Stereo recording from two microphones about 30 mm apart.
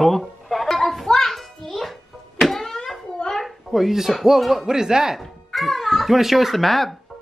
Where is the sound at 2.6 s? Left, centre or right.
Centre.